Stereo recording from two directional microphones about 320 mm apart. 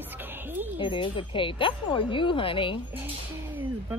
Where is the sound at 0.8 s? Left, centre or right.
Centre.